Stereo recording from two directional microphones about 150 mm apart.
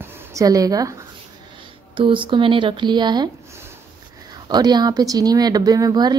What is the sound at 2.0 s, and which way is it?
Speech, 35° right (ahead or behind).